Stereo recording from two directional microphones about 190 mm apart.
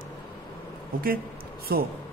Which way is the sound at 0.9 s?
50° right (ahead or behind).